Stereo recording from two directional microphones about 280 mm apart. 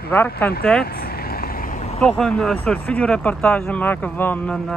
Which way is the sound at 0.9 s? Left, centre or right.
Left.